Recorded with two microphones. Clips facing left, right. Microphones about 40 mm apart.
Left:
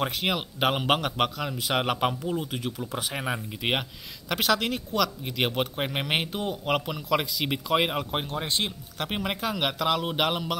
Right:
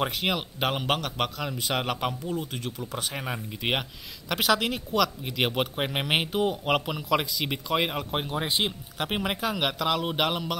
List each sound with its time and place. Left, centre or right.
0.0 s speech: centre
8.3 s speech: centre